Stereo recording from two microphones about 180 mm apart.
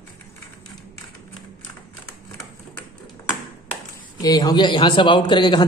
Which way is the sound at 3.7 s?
20° left (ahead or behind).